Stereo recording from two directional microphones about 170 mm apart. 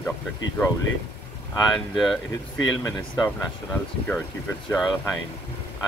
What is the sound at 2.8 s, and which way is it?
Speech, 15° left (ahead or behind).